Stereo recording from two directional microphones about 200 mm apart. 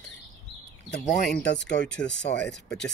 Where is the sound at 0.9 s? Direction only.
50° left (ahead or behind).